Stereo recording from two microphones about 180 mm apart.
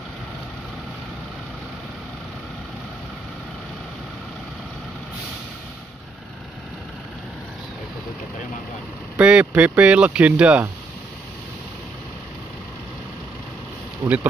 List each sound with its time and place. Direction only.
9.1 s speech: 5° right (ahead or behind)
14.0 s speech: 15° right (ahead or behind)